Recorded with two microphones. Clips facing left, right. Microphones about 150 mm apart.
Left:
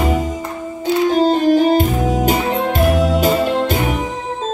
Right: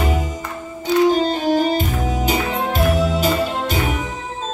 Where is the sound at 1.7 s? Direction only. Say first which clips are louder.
Left 6 dB; 50° left (ahead or behind).